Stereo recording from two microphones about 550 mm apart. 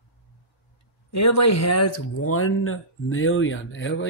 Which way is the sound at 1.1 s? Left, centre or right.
Left.